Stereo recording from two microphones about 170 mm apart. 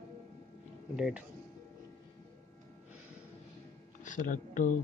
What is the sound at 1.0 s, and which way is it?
Speech, 5° right (ahead or behind).